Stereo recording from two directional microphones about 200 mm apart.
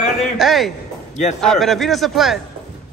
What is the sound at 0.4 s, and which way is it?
A man's voice, centre (ahead or behind).